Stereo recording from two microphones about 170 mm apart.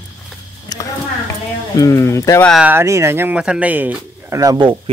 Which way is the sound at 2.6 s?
15° right (ahead or behind).